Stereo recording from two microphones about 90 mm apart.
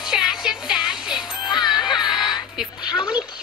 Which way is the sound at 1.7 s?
55° left (ahead or behind).